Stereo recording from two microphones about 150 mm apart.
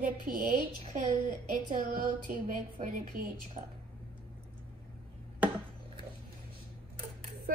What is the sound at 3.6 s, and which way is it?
Speech, 55° right (ahead or behind).